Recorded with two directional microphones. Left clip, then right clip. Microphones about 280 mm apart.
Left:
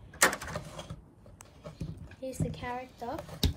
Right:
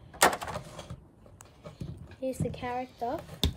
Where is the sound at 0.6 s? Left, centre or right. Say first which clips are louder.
Even; centre.